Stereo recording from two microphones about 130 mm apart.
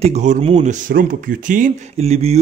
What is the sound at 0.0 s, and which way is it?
Speech, 60° right (ahead or behind).